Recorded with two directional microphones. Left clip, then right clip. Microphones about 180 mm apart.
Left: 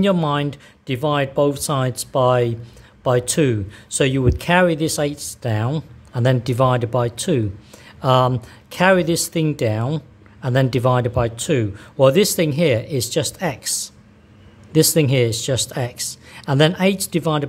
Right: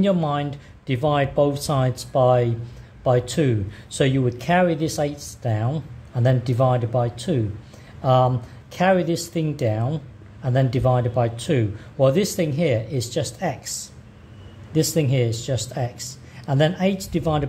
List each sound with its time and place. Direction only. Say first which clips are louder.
0.0 s speech: left 3 dB; 30° left (ahead or behind)